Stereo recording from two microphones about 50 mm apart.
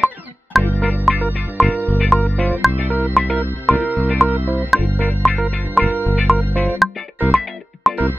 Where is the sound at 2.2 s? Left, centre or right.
Left.